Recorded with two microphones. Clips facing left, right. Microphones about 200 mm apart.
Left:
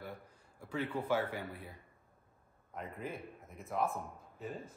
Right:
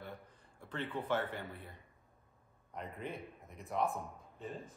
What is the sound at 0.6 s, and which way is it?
A man's voice, 5° left (ahead or behind).